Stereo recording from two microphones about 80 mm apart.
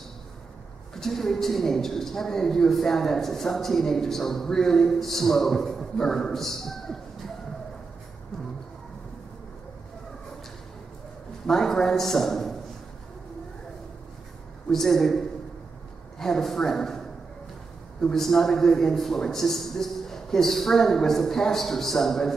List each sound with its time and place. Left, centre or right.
0.9 s a woman's voice: centre
11.4 s a woman's voice: centre
14.7 s a woman's voice: centre